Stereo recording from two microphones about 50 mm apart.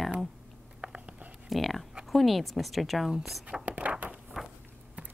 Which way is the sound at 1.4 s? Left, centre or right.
Centre.